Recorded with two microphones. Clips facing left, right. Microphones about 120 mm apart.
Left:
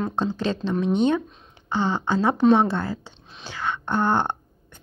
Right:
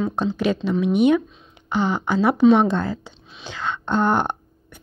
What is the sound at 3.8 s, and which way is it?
Speech, 20° right (ahead or behind).